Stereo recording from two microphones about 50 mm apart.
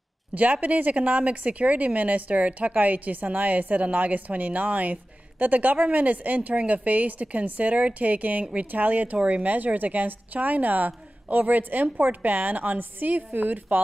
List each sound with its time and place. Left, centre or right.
0.3 s speech: right